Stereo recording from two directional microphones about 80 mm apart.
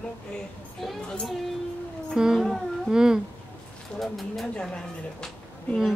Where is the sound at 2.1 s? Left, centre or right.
Centre.